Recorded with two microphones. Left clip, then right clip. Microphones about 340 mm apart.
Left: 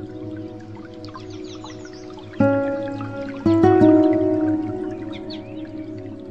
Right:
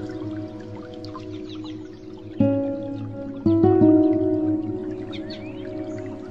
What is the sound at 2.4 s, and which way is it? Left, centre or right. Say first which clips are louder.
Music: left 4 dB; centre.